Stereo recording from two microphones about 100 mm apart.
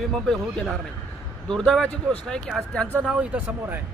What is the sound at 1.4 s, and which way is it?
Speech, 5° left (ahead or behind).